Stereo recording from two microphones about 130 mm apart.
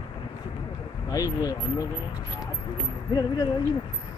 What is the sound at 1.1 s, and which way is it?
Speech, 30° left (ahead or behind).